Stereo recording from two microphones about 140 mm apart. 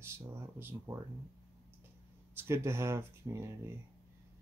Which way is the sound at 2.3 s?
15° right (ahead or behind).